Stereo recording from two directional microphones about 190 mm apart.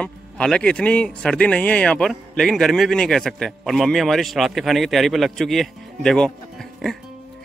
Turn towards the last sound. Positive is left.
turn(degrees=0)  # may be behind; listen again after turning